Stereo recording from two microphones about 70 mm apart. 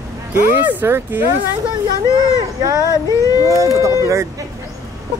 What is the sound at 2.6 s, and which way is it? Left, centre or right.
Speech, right.